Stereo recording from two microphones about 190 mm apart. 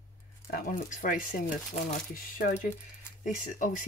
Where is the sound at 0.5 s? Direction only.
45° left (ahead or behind).